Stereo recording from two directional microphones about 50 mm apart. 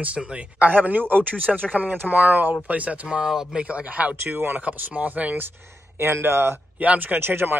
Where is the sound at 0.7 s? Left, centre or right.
Right.